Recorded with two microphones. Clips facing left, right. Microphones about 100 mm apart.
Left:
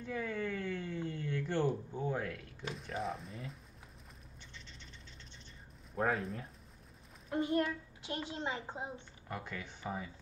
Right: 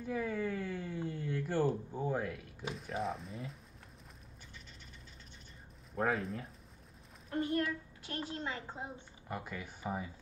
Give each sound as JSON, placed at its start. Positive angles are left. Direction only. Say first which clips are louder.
{"t": 0.0, "sound": "a sound", "louder": "right 2 dB", "side_deg": -10}
{"t": 5.9, "sound": "speech", "louder": "even", "side_deg": 0}
{"t": 7.3, "sound": "a child's voice", "louder": "left 1 dB", "side_deg": 20}
{"t": 9.3, "sound": "speech", "louder": "right 1 dB", "side_deg": -5}